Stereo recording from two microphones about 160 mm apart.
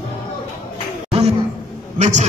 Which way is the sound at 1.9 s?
45° right (ahead or behind).